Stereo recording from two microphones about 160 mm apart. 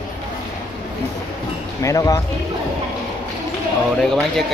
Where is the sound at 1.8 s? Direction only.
20° left (ahead or behind).